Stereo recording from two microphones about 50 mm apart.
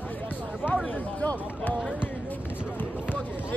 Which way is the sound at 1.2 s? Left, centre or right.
Left.